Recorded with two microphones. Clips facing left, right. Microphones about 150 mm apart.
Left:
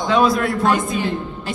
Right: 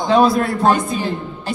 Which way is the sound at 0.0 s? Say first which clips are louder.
Right 2 dB; 30° right (ahead or behind).